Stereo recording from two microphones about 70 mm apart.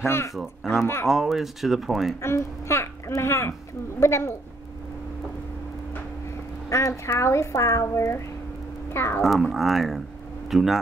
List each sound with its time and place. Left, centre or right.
0.0 s a woman's voice: left
0.3 s speech: centre
2.2 s a woman's voice: left
6.7 s a woman's voice: left
9.2 s speech: centre